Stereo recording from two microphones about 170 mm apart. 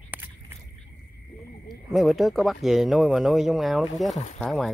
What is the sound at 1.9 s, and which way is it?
Speech, centre (ahead or behind).